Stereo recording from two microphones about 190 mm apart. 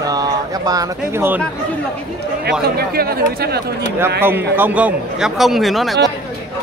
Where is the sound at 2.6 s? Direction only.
55° right (ahead or behind).